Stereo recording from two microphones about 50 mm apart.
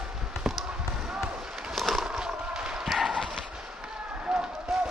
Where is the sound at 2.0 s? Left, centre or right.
Centre.